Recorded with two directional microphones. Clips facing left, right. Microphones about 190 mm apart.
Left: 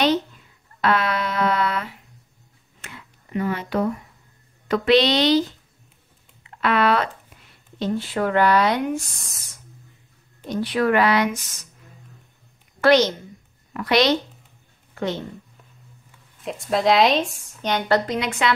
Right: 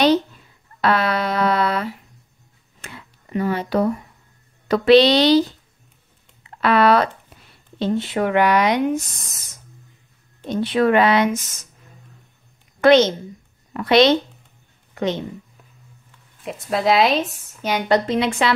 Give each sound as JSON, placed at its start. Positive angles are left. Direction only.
{"t": 0.7, "sound": "speech", "side_deg": -35}
{"t": 2.8, "sound": "a sound", "side_deg": -35}
{"t": 4.6, "sound": "a woman's voice", "side_deg": -35}
{"t": 6.6, "sound": "a woman's voice", "side_deg": -35}
{"t": 7.8, "sound": "speech", "side_deg": -20}
{"t": 10.4, "sound": "speech", "side_deg": -25}
{"t": 12.8, "sound": "a woman's voice", "side_deg": -25}
{"t": 16.4, "sound": "a woman's voice", "side_deg": 0}